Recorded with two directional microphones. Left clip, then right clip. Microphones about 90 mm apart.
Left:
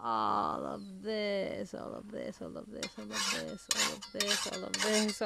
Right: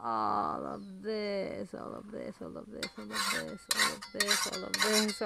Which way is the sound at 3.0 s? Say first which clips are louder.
Right 2 dB; 35° right (ahead or behind).